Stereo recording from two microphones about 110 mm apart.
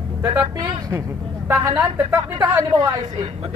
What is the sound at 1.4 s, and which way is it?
A woman's voice, 30° right (ahead or behind).